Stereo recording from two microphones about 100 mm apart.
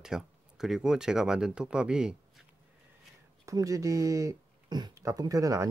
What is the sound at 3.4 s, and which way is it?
Speech, 35° right (ahead or behind).